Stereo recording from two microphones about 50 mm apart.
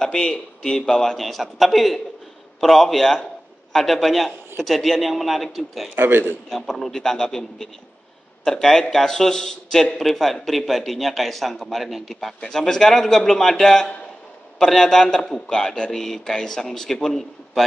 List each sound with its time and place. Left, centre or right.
0.0 s a man's voice: centre
5.9 s a man's voice: right
6.5 s a man's voice: centre